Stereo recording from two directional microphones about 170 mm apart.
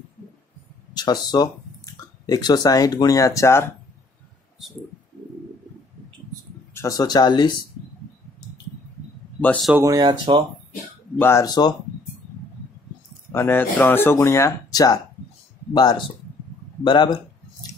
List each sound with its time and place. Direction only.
0.9 s speech: 25° left (ahead or behind)
6.7 s speech: 20° left (ahead or behind)
9.4 s speech: 10° left (ahead or behind)
9.8 s speech: 25° right (ahead or behind)
11.1 s speech: 15° left (ahead or behind)
13.3 s speech: 15° left (ahead or behind)